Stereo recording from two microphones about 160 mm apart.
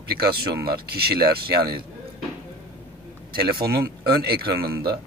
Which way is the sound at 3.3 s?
70° right (ahead or behind).